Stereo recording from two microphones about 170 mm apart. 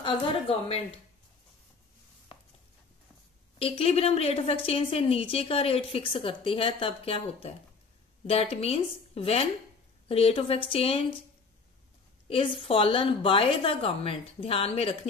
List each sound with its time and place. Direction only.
0.0 s a woman's voice: 35° left (ahead or behind)
3.5 s a woman's voice: 35° left (ahead or behind)
12.3 s a woman's voice: 35° left (ahead or behind)